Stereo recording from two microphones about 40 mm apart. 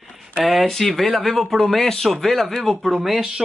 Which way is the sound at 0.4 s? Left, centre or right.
Centre.